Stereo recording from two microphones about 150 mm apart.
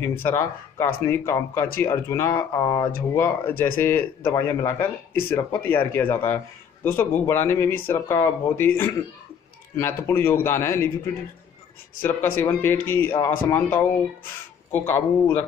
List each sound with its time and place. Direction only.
0.2 s speech: 15° left (ahead or behind)
12.0 s speech: 15° left (ahead or behind)